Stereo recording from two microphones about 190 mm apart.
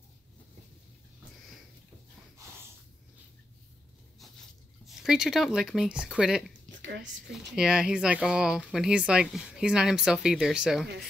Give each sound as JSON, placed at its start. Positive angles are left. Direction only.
{"t": 4.8, "sound": "speech", "side_deg": -5}
{"t": 6.8, "sound": "whispering", "side_deg": -70}
{"t": 7.3, "sound": "speech", "side_deg": -5}